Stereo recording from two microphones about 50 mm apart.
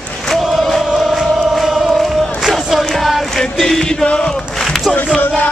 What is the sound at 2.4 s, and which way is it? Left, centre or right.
Music, centre.